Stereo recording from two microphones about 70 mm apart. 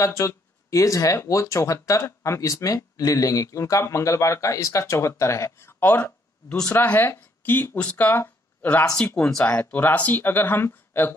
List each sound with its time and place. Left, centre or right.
0.0 s speech: left
8.1 s speech: centre; by 11.1 s left